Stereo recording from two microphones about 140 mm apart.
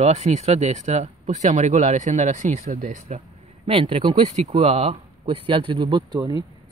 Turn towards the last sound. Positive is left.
turn(degrees=-30)  # may be behind; listen again after turning